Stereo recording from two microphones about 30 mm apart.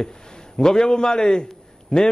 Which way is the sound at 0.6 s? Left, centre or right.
Left.